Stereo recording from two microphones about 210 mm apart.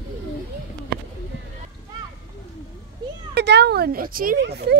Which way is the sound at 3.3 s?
50° right (ahead or behind).